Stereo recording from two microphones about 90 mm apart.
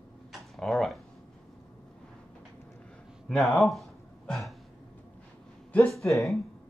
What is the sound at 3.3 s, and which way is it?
Speech, 5° left (ahead or behind).